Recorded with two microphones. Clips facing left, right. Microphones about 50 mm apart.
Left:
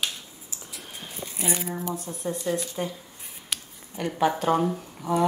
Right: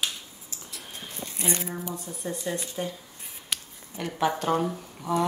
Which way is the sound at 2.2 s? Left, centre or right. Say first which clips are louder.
Left 4 dB; centre.